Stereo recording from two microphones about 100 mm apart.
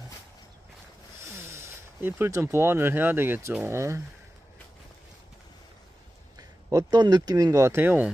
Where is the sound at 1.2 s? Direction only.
25° right (ahead or behind).